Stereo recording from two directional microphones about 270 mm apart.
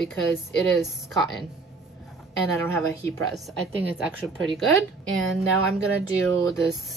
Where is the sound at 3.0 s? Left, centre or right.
Centre.